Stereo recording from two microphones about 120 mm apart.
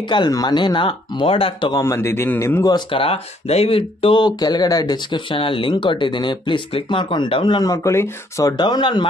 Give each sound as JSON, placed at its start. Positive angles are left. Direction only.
{"t": 0.0, "sound": "speech", "side_deg": 40}
{"t": 1.7, "sound": "speech", "side_deg": 25}
{"t": 2.7, "sound": "speech", "side_deg": 50}